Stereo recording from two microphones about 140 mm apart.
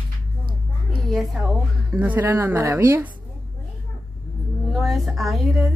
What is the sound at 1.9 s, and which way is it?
Speech, 15° right (ahead or behind).